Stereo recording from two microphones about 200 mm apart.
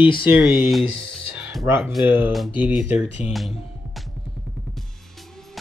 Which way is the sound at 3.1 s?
30° left (ahead or behind).